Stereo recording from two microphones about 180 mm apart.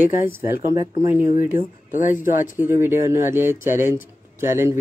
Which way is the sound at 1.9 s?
45° left (ahead or behind).